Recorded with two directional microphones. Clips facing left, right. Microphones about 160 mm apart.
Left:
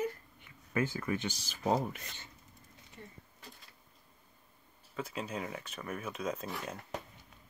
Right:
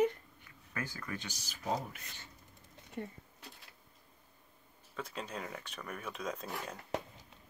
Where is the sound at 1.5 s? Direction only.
70° left (ahead or behind).